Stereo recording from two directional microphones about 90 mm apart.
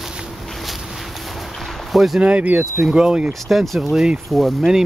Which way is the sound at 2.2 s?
15° right (ahead or behind).